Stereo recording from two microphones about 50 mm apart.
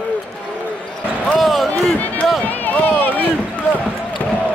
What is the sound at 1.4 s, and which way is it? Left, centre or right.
Run, centre.